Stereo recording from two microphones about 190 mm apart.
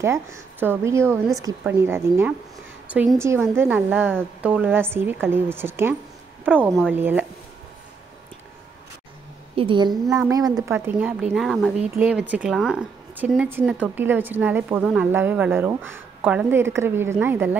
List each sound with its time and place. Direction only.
0.0 s a woman's voice: 15° right (ahead or behind)
9.6 s a woman's voice: 25° right (ahead or behind)